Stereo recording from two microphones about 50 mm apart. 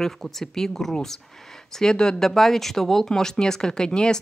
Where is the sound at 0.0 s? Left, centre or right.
Centre.